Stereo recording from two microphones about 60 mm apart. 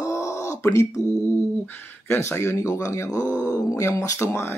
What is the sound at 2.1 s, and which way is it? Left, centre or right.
Speech, left.